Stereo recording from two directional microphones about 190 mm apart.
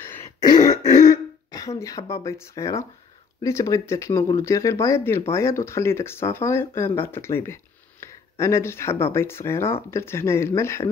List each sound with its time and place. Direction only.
0.0 s throat clearing: 15° left (ahead or behind)
1.5 s speech: 15° left (ahead or behind)